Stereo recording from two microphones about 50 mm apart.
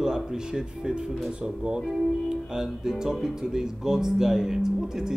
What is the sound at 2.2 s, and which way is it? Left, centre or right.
Speech, centre.